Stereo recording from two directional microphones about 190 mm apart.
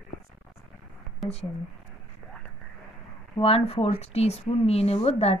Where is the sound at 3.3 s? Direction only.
30° left (ahead or behind).